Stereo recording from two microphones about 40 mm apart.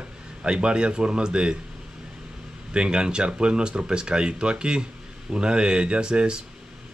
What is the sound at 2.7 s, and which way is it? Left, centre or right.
Speech, right.